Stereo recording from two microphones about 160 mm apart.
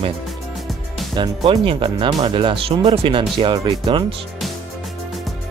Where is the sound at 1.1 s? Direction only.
30° right (ahead or behind).